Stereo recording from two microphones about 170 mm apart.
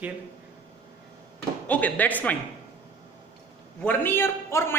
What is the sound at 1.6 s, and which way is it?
Speech, 10° left (ahead or behind).